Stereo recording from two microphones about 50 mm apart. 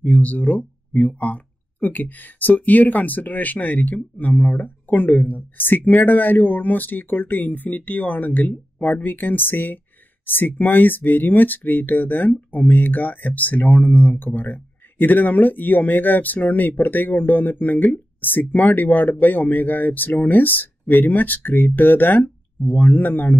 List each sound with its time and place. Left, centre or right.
0.0 s speech: left